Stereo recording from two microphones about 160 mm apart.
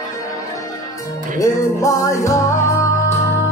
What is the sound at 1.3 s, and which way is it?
Music, 20° left (ahead or behind).